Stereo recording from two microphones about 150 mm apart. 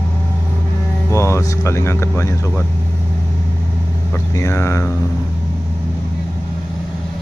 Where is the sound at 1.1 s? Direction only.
20° left (ahead or behind).